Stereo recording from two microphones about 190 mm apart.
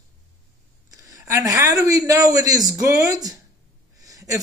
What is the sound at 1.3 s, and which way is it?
Speech, 20° right (ahead or behind).